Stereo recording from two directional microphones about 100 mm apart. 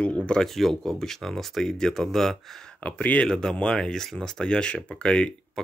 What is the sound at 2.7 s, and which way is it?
Speech, 15° left (ahead or behind).